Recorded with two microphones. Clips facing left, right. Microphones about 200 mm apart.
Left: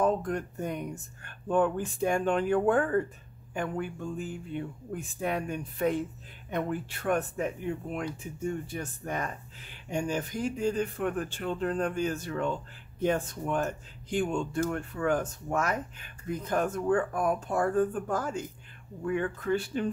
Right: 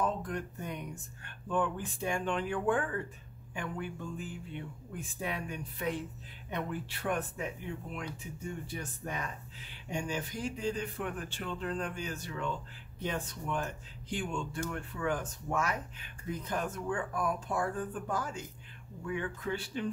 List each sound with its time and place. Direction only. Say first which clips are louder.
0.0 s speech: left 7 dB; 45° left (ahead or behind)
8.7 s speech: left 5 dB; 50° left (ahead or behind)